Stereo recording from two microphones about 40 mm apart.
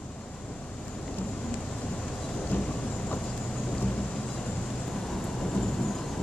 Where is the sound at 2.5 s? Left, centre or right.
Left.